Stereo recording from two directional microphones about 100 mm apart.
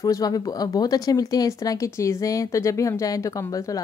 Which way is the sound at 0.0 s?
40° left (ahead or behind).